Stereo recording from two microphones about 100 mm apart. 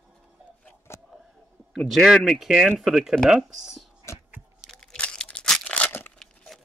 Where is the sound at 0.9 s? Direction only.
25° left (ahead or behind).